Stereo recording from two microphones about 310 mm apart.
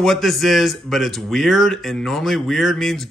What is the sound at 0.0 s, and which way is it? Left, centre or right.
Speech, centre.